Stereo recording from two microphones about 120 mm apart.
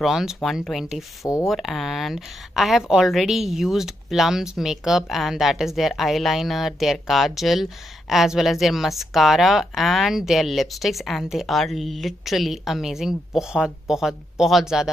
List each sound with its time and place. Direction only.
0.0 s a woman's voice: 5° right (ahead or behind)
1.2 s speech: 25° left (ahead or behind)
1.5 s a woman's voice: centre (ahead or behind)